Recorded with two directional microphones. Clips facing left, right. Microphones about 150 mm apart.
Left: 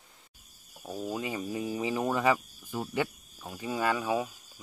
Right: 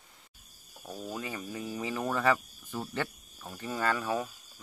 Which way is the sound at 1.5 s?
15° left (ahead or behind).